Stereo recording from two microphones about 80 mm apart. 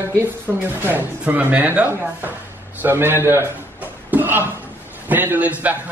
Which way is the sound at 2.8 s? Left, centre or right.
Right.